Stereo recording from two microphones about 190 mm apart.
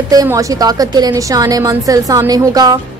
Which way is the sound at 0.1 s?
20° right (ahead or behind).